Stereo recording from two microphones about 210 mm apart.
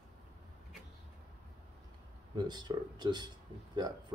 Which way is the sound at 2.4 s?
20° right (ahead or behind).